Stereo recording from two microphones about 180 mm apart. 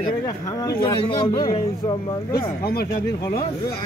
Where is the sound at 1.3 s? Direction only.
30° left (ahead or behind).